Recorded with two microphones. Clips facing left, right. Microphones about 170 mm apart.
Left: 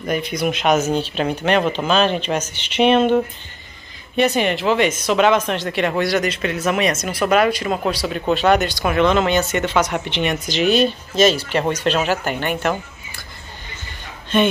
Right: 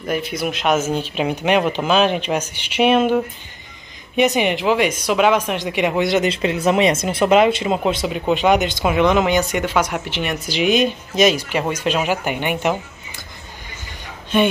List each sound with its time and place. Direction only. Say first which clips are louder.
0.0 s speech: left 1 dB; 5° right (ahead or behind)
4.2 s speech: right 1 dB; 15° right (ahead or behind)
14.3 s speech: even; 10° right (ahead or behind)